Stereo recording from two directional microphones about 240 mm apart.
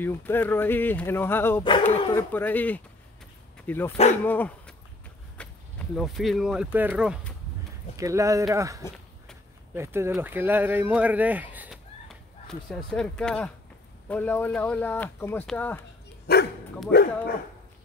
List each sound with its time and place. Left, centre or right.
0.0 s speech: centre
3.9 s speech: left
4.2 s dog: centre
5.4 s speech: centre
16.3 s dog: left
16.9 s speech: left